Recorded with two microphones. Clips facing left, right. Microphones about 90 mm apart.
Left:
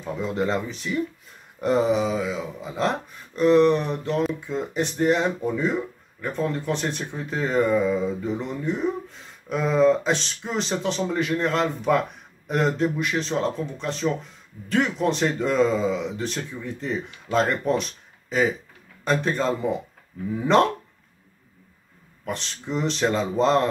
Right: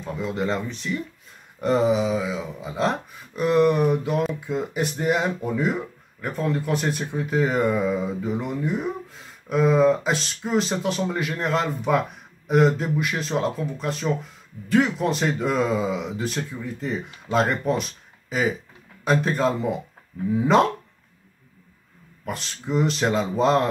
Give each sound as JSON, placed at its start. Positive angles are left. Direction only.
{"t": 0.0, "sound": "speech", "side_deg": 0}
{"t": 22.2, "sound": "speech", "side_deg": -5}